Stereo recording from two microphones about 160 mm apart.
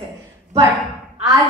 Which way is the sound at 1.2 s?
20° right (ahead or behind).